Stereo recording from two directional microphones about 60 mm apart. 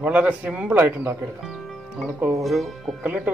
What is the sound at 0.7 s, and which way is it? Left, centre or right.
Speech, right.